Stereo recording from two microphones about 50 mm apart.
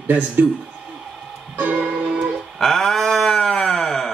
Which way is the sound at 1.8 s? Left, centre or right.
Centre.